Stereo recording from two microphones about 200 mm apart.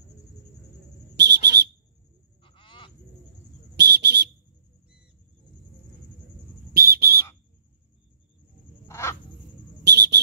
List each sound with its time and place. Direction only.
1.1 s whistle: 60° right (ahead or behind)
2.4 s fowl: 25° left (ahead or behind)
3.7 s whistle: 55° right (ahead or behind)
6.7 s whistle: 50° right (ahead or behind)
8.8 s a sound: 15° left (ahead or behind)
9.8 s a sound: 55° right (ahead or behind)